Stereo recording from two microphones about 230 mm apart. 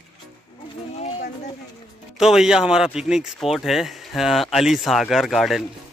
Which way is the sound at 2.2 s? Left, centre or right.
Centre.